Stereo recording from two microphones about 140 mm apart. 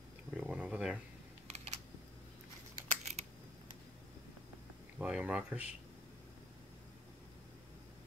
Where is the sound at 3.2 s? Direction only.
50° right (ahead or behind).